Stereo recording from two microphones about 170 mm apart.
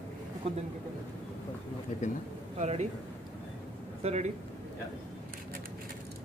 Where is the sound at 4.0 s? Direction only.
40° right (ahead or behind).